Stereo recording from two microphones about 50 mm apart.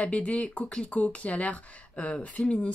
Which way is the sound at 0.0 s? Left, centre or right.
Left.